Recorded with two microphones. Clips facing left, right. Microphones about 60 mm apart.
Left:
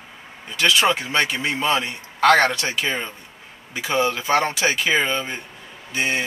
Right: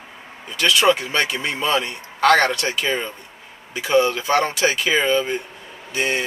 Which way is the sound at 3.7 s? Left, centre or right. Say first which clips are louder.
Right 4 dB; left.